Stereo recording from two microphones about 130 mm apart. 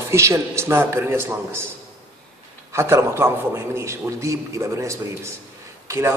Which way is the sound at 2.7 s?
20° right (ahead or behind).